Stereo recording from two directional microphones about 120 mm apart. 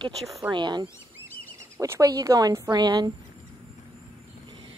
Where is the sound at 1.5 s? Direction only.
20° right (ahead or behind).